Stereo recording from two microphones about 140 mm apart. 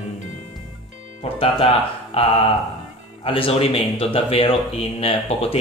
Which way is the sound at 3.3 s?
40° left (ahead or behind).